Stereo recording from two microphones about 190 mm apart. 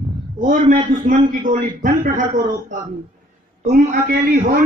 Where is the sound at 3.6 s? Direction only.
50° right (ahead or behind).